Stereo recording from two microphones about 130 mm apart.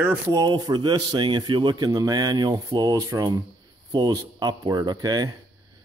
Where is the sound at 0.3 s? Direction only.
35° right (ahead or behind).